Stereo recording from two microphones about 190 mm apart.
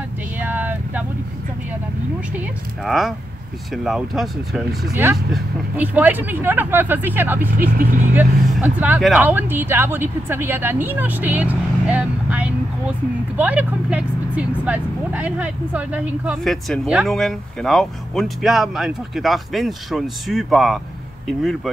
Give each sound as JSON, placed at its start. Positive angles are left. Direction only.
{"t": 0.4, "sound": "vehicle", "side_deg": -10}
{"t": 2.8, "sound": "speech", "side_deg": 0}
{"t": 7.5, "sound": "speech", "side_deg": -45}
{"t": 8.1, "sound": "speech", "side_deg": -10}